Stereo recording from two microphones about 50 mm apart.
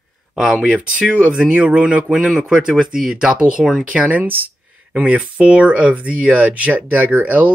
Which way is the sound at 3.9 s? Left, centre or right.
Right.